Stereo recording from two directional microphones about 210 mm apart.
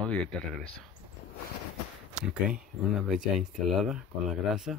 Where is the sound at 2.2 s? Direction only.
5° right (ahead or behind).